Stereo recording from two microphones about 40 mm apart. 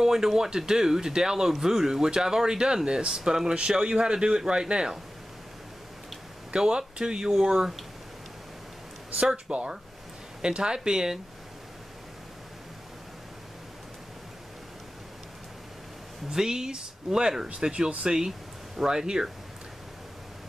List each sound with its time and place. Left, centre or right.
0.0 s speech: centre
6.5 s speech: centre
9.1 s speech: right
16.3 s speech: centre